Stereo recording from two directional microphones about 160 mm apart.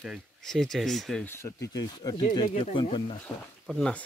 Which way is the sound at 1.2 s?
15° left (ahead or behind).